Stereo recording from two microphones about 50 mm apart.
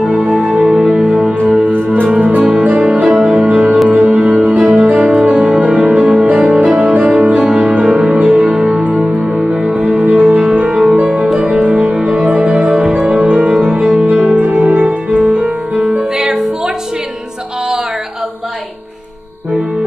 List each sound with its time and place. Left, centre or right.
0.6 s music: centre
1.5 s music: right
9.8 s music: right
12.7 s music: centre
13.0 s music: right
16.2 s music: centre